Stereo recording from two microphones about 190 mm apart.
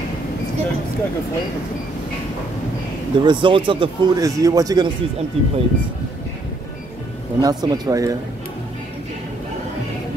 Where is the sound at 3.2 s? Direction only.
25° right (ahead or behind).